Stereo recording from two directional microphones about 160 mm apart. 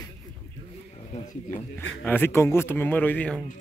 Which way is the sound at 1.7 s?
10° left (ahead or behind).